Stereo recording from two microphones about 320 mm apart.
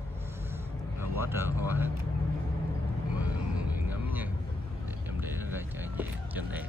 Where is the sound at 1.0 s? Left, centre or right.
Centre.